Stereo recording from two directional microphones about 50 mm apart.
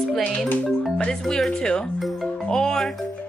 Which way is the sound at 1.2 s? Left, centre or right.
Centre.